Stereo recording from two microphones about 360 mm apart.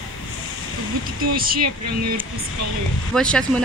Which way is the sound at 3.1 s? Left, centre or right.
Centre.